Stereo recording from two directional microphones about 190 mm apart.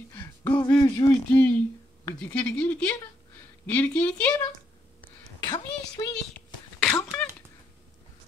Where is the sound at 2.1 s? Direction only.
10° left (ahead or behind).